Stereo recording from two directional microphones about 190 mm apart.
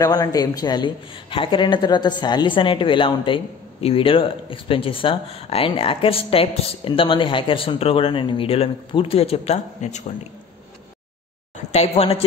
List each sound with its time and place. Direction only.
0.0 s speech: 20° left (ahead or behind); by 10.0 s 40° left (ahead or behind)
11.5 s speech: 35° left (ahead or behind)